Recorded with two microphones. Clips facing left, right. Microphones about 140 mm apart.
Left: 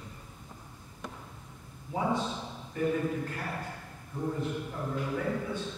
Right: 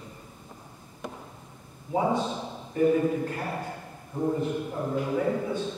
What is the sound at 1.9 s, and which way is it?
A man's voice, 20° right (ahead or behind).